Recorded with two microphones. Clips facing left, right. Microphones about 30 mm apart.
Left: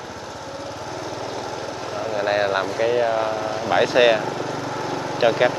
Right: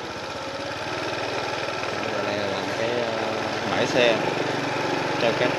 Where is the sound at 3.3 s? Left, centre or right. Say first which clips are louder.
Left 2 dB; right.